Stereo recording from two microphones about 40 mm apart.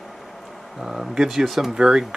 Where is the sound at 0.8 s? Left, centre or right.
Centre.